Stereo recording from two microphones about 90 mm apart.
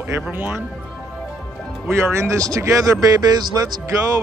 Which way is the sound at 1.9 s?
30° right (ahead or behind).